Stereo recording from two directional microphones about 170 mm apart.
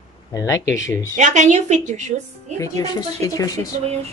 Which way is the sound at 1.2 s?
45° right (ahead or behind).